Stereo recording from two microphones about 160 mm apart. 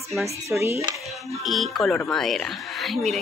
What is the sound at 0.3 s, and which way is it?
Dishes, 15° right (ahead or behind).